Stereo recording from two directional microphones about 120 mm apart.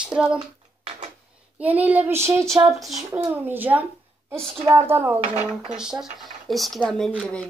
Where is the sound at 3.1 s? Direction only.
15° right (ahead or behind).